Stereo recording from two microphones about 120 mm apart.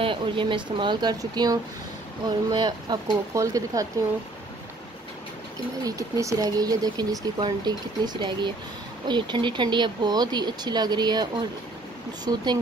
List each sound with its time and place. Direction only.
0.0 s speech: 45° right (ahead or behind); by 3.8 s 30° right (ahead or behind)
5.9 s speech: 25° right (ahead or behind)
12.3 s speech: 35° right (ahead or behind)